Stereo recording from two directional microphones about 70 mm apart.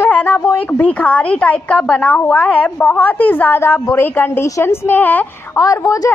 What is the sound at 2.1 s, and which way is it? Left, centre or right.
A woman's voice, left.